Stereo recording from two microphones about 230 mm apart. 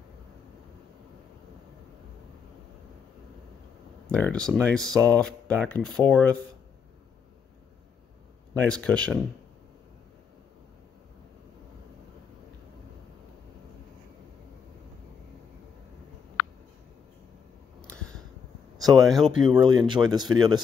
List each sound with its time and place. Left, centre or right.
4.1 s speech: centre
8.5 s speech: centre
17.8 s a sound: centre
18.8 s speech: centre
19.6 s speech: centre